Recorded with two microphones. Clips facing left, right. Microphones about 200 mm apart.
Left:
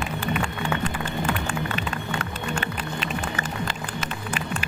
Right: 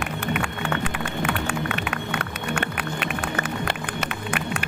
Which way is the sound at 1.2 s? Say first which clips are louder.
Right 1 dB; 70° right (ahead or behind).